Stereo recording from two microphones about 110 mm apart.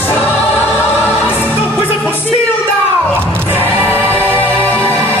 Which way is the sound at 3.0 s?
15° left (ahead or behind).